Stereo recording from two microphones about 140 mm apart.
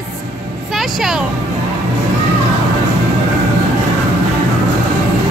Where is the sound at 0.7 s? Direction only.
Centre (ahead or behind).